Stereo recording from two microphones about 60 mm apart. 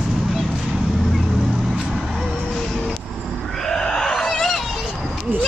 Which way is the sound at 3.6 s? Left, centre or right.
Centre.